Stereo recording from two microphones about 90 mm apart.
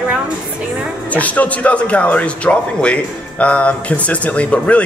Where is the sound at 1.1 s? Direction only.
15° left (ahead or behind).